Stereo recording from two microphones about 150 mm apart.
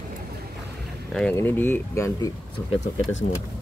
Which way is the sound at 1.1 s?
5° left (ahead or behind).